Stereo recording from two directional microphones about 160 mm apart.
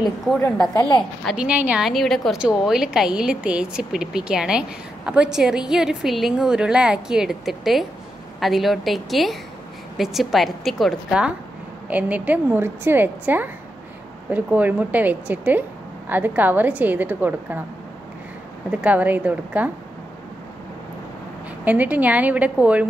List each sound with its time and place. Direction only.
0.7 s a woman's voice: 30° left (ahead or behind)
1.2 s a woman's voice: 5° right (ahead or behind)
18.7 s a woman's voice: 10° right (ahead or behind)
21.6 s a woman's voice: 10° right (ahead or behind)